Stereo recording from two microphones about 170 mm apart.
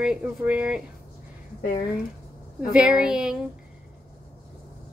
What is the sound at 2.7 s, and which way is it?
Speech, 5° right (ahead or behind).